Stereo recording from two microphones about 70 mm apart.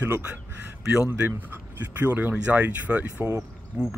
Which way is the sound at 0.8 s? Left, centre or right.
Centre.